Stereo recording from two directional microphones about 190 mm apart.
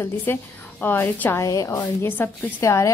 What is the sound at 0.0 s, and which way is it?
A woman's voice, 10° left (ahead or behind).